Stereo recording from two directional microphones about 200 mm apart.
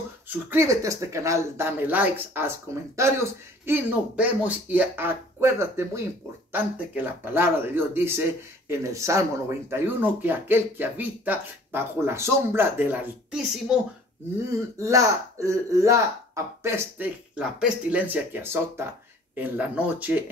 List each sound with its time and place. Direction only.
0.5 s speech: 15° right (ahead or behind)
7.3 s speech: 10° right (ahead or behind)
14.8 s speech: 15° right (ahead or behind)